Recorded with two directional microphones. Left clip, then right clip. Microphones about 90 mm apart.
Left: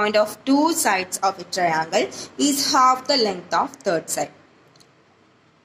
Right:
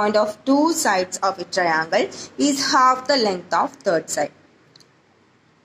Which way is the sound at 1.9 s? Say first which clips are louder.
Right 1 dB; 40° left (ahead or behind).